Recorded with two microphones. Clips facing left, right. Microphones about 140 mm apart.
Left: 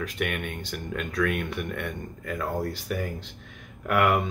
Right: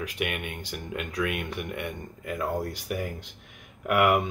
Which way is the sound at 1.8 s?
10° right (ahead or behind).